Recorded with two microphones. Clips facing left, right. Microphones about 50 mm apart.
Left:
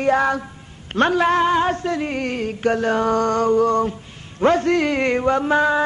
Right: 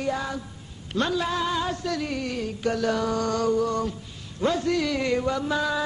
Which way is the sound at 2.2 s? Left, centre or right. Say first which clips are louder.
Left 6 dB; left.